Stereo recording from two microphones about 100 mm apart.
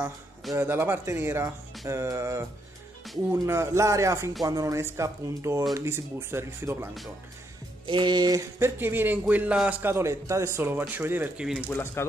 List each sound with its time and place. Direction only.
0.0 s a man's voice: 25° right (ahead or behind)
3.4 s a man's voice: 30° right (ahead or behind)
7.8 s music: 50° right (ahead or behind)
8.5 s a man's voice: 25° right (ahead or behind)
11.3 s speech: 5° right (ahead or behind)
11.6 s speech: 20° left (ahead or behind)